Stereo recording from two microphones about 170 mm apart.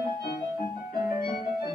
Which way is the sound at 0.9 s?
55° left (ahead or behind).